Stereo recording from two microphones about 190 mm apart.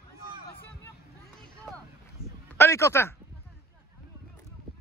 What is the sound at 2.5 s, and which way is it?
Speech, 15° left (ahead or behind).